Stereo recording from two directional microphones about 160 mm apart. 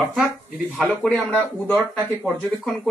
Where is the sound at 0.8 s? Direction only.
10° right (ahead or behind).